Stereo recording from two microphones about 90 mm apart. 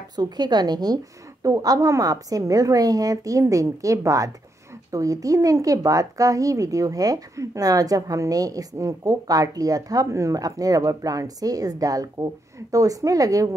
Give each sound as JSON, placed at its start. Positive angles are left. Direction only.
{"t": 0.1, "sound": "a woman's voice", "side_deg": -50}